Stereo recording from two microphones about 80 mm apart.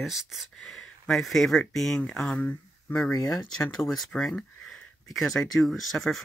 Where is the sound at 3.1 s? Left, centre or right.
Left.